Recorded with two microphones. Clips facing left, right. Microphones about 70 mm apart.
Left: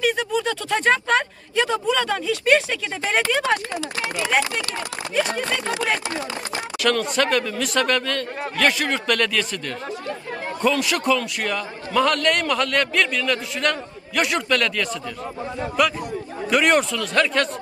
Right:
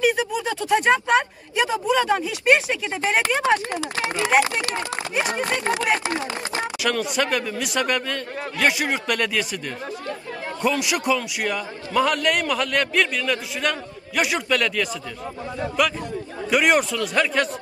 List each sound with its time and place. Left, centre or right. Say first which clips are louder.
0.0 s speech: even; centre
6.8 s speech: left 4 dB; centre
10.6 s a man's voice: left 2 dB; centre